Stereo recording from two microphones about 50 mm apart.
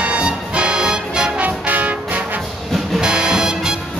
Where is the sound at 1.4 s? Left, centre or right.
Right.